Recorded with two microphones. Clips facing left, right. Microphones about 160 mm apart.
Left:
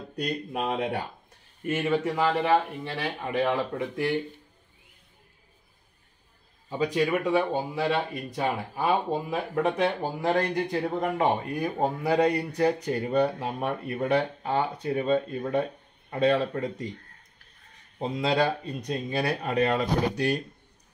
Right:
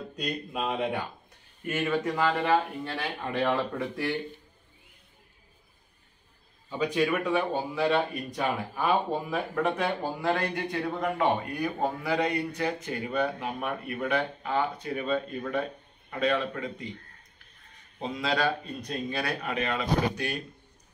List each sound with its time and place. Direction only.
0.5 s speech: 40° left (ahead or behind)
1.7 s speech: 25° left (ahead or behind)
2.8 s speech: 5° left (ahead or behind)
3.3 s speech: 15° left (ahead or behind)
7.1 s speech: 20° left (ahead or behind)
10.3 s speech: 40° left (ahead or behind)
17.9 s speech: 30° left (ahead or behind)